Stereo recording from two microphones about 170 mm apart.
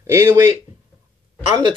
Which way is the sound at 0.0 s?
15° right (ahead or behind).